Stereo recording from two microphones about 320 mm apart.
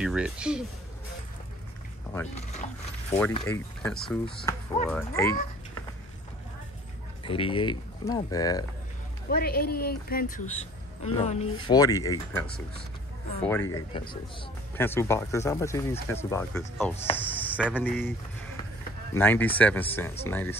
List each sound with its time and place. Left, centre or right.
0.0 s speech: centre
3.1 s speech: centre
7.2 s speech: centre
9.3 s a woman's voice: left; by 18.1 s centre
19.1 s speech: centre